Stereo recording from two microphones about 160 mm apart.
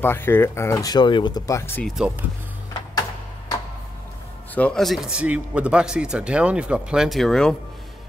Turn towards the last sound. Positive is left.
turn(degrees=5)  # may be behind; listen again after turning